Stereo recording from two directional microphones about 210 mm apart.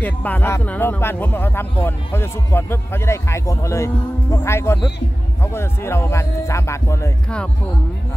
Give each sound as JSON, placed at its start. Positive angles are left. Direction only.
{"t": 0.0, "sound": "speech", "side_deg": 10}